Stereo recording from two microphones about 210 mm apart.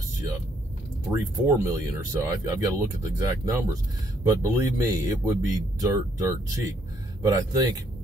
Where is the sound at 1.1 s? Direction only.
10° right (ahead or behind).